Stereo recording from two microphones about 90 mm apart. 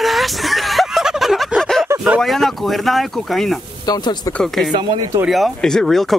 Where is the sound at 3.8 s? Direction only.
50° left (ahead or behind).